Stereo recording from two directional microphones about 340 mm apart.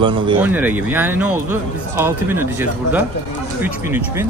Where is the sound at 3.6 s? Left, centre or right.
Centre.